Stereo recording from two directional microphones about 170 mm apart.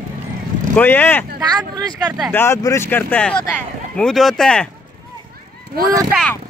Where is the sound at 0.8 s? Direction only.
10° left (ahead or behind).